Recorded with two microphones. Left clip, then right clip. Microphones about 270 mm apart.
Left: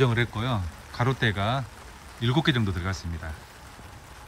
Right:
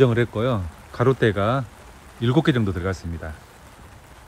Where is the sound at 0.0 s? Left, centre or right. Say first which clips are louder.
Right 7 dB; centre.